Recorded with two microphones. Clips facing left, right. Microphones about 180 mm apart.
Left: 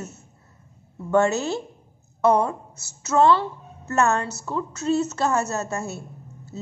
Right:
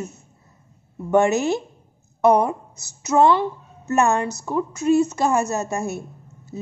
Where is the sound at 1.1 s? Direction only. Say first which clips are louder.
Right 3 dB; 15° right (ahead or behind).